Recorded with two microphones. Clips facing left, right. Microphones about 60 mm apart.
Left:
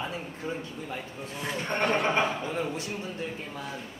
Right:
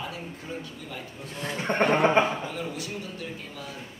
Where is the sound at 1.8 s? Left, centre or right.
Right.